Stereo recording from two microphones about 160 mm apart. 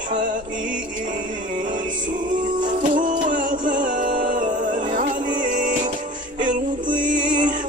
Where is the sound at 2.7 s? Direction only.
55° right (ahead or behind).